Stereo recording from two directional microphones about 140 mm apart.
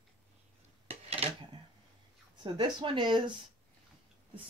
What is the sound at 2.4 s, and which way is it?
Speech, 35° right (ahead or behind).